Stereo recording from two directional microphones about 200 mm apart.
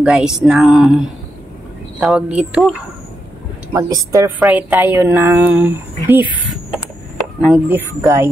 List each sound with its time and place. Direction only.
0.0 s speech: 5° right (ahead or behind)
3.7 s a woman's voice: 15° right (ahead or behind)